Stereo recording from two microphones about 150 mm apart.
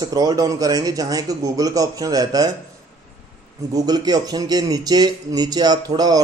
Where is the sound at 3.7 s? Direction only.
25° right (ahead or behind).